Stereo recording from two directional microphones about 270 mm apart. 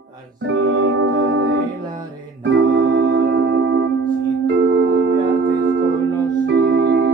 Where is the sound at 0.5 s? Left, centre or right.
Right.